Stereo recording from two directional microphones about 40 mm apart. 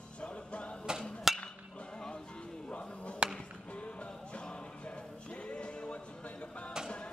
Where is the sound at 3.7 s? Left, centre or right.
Left.